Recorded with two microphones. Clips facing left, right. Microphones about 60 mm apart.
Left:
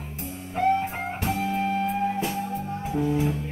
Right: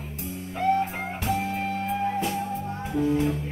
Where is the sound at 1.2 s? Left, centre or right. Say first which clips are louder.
Left 1 dB; centre.